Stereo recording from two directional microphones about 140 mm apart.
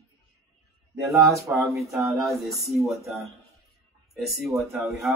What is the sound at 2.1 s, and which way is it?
Speech, centre (ahead or behind).